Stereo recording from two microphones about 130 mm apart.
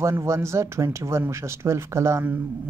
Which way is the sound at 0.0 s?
20° right (ahead or behind).